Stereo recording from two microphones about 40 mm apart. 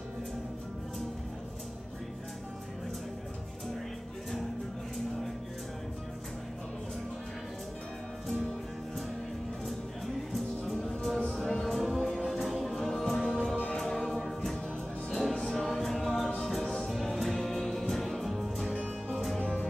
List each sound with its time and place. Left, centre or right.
10.7 s music: centre
13.7 s choir: centre
15.0 s music: centre
19.4 s music: left